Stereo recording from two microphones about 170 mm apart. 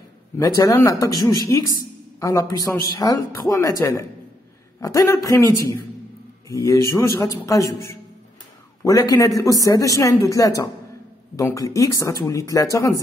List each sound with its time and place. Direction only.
0.4 s a man's voice: 20° left (ahead or behind)